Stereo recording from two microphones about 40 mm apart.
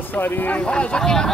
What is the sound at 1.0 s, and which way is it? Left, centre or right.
Speech, centre.